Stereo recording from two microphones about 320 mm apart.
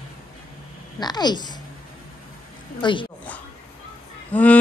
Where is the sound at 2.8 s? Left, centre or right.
Centre.